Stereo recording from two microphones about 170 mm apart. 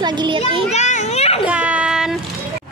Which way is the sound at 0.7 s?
45° left (ahead or behind).